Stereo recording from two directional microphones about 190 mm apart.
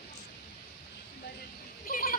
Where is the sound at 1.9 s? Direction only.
50° left (ahead or behind).